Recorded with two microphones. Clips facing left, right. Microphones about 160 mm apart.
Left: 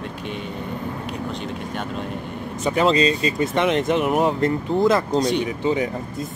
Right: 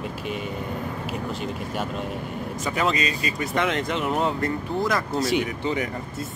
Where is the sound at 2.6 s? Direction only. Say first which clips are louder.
Left 7 dB; 25° left (ahead or behind).